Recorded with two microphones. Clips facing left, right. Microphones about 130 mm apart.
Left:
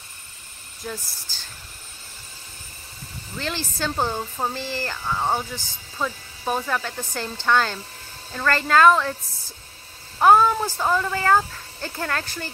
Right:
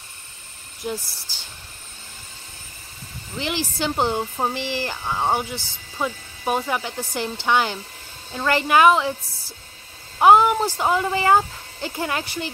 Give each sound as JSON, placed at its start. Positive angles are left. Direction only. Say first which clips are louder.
{"t": 0.8, "sound": "speech", "louder": "right 5 dB", "side_deg": -20}
{"t": 1.3, "sound": "a sound", "louder": "right 2 dB", "side_deg": -15}
{"t": 3.3, "sound": "speech", "louder": "right 3 dB", "side_deg": -15}
{"t": 10.1, "sound": "speech", "louder": "right 2 dB", "side_deg": -15}